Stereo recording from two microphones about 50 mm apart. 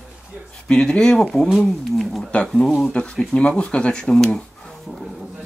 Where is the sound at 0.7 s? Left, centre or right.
Left.